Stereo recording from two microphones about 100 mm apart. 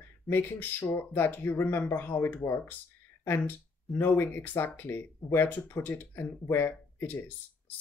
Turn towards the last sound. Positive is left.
turn(degrees=20)  # may be behind; listen again after turning